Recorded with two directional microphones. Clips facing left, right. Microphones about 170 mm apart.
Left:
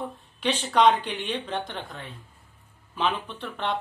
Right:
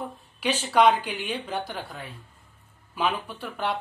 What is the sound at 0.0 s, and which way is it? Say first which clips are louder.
Speech: left 1 dB; 10° right (ahead or behind).